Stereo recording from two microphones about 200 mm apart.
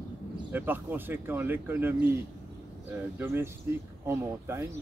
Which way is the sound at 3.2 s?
10° right (ahead or behind).